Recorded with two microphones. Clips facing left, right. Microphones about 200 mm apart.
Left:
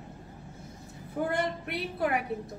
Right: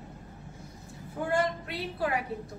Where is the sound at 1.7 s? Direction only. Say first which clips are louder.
Left 2 dB; 20° left (ahead or behind).